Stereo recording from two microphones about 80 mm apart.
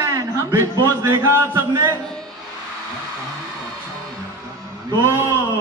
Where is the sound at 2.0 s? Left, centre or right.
Centre.